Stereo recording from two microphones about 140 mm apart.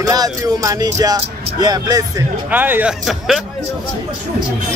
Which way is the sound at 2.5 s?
15° right (ahead or behind).